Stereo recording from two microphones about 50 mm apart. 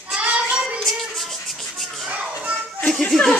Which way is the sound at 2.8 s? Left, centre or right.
Centre.